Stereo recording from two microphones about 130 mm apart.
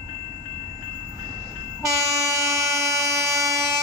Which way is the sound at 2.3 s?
25° right (ahead or behind).